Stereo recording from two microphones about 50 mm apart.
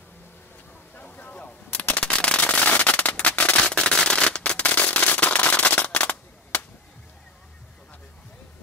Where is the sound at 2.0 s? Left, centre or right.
Left.